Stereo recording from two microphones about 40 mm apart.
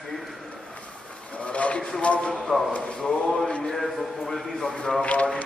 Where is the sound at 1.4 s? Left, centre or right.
Left.